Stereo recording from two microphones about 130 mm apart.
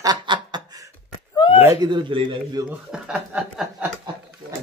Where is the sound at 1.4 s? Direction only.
40° left (ahead or behind).